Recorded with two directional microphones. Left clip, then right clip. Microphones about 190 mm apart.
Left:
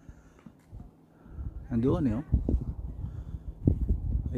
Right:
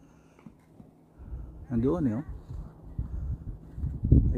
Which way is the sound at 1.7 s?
5° right (ahead or behind).